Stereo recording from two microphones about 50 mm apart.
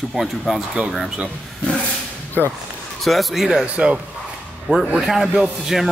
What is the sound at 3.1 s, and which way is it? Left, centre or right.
Speech, centre.